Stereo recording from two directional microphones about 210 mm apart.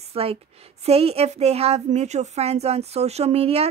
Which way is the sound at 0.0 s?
30° right (ahead or behind).